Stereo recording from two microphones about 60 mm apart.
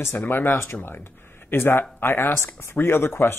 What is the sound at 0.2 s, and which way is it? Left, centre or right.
Speech, left.